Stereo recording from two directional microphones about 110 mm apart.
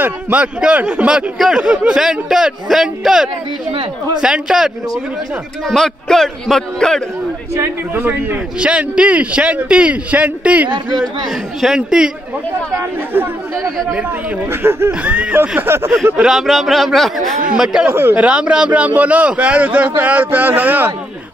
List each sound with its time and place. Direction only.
0.0 s a man's voice: 10° right (ahead or behind); by 7.0 s 5° left (ahead or behind)
7.5 s a man's voice: 20° right (ahead or behind)
12.7 s speech: 20° right (ahead or behind)
14.5 s a man's voice: 20° right (ahead or behind)
16.2 s a man's voice: 5° right (ahead or behind)
17.8 s a man's voice: 20° right (ahead or behind)